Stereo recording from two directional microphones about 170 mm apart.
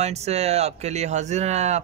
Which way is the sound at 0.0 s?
40° right (ahead or behind).